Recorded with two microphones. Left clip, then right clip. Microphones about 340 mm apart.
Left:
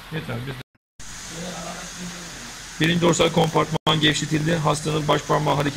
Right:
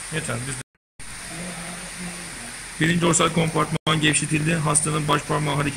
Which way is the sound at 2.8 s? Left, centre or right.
Centre.